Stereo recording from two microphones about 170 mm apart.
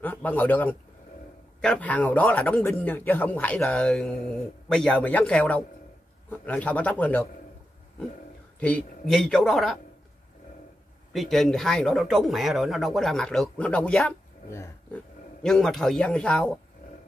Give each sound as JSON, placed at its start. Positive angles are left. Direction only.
{"t": 0.0, "sound": "speech", "side_deg": 10}
{"t": 8.5, "sound": "speech", "side_deg": 10}
{"t": 11.1, "sound": "speech", "side_deg": 0}
{"t": 14.5, "sound": "speech", "side_deg": 15}
{"t": 15.4, "sound": "speech", "side_deg": 5}